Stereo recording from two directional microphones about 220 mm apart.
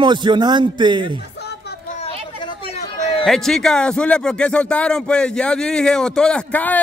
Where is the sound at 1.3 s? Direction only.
50° left (ahead or behind).